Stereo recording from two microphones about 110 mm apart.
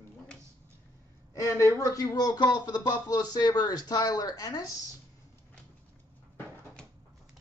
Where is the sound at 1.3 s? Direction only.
30° left (ahead or behind).